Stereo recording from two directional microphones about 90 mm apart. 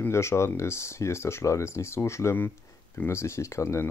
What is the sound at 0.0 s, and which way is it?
Speech, 30° left (ahead or behind).